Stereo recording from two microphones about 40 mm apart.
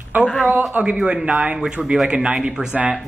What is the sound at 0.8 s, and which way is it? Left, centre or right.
Speech, right.